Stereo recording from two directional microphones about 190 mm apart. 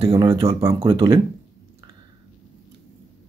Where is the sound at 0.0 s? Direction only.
20° right (ahead or behind).